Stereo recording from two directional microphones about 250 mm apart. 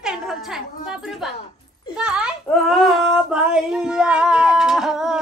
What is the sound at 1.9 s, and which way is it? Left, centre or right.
Child singing, centre.